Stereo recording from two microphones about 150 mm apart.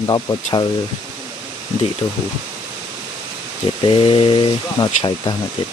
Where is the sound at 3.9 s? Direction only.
35° left (ahead or behind).